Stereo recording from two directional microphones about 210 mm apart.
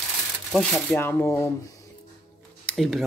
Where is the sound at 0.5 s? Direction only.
5° left (ahead or behind).